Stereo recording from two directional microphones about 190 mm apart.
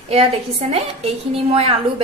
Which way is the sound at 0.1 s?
35° right (ahead or behind).